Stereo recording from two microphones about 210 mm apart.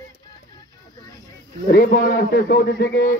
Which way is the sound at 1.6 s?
40° left (ahead or behind).